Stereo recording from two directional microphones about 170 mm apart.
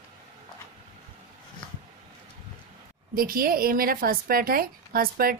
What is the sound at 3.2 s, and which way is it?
A woman's voice, 60° right (ahead or behind).